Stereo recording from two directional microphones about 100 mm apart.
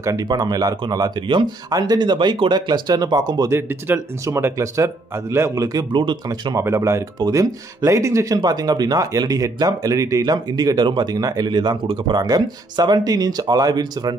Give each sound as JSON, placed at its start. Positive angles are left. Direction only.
{"t": 0.0, "sound": "speech", "side_deg": -35}
{"t": 1.7, "sound": "speech", "side_deg": -40}
{"t": 3.5, "sound": "speech", "side_deg": -20}
{"t": 5.9, "sound": "speech", "side_deg": -50}
{"t": 6.5, "sound": "speech", "side_deg": -30}
{"t": 8.4, "sound": "speech", "side_deg": -40}